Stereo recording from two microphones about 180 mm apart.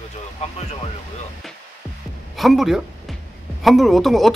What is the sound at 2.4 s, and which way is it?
Speech, centre (ahead or behind).